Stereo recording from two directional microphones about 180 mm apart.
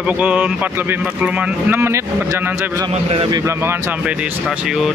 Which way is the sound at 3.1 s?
30° right (ahead or behind).